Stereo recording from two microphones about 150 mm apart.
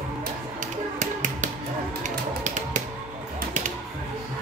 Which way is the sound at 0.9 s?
55° right (ahead or behind).